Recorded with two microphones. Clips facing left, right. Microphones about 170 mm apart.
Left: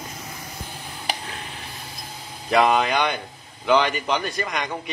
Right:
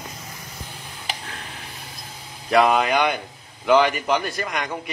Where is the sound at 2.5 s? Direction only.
Centre (ahead or behind).